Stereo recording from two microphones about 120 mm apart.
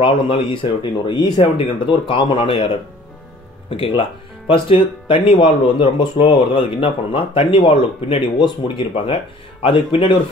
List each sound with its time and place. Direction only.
0.0 s speech: 45° left (ahead or behind)
3.7 s speech: 45° left (ahead or behind)